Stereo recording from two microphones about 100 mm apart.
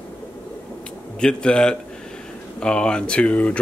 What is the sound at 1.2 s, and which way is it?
Speech, 10° left (ahead or behind).